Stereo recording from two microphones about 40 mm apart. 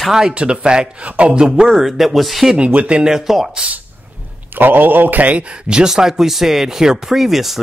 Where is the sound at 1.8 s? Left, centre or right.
Centre.